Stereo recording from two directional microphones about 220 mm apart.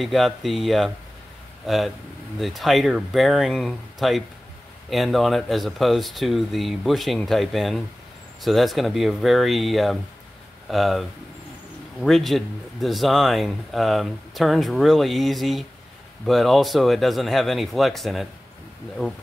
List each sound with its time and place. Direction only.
0.0 s speech: centre (ahead or behind)